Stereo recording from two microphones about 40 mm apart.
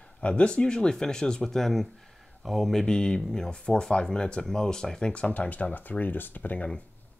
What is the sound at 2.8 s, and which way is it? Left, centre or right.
Speech, left.